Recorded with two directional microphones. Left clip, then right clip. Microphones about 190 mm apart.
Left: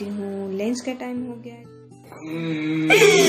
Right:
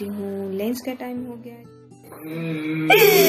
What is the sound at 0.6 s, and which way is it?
Speech, centre (ahead or behind).